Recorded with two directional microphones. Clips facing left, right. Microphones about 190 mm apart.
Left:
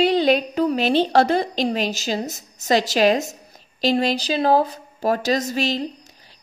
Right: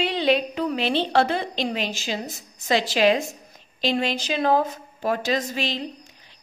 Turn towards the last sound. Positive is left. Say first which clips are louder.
# left 4 dB
turn(degrees=40)  # may be behind; listen again after turning